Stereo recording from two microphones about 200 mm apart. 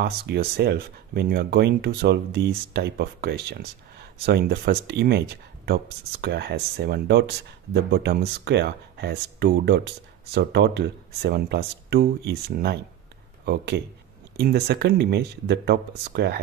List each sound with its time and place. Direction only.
0.0 s speech: 55° right (ahead or behind)
14.3 s speech: 55° right (ahead or behind)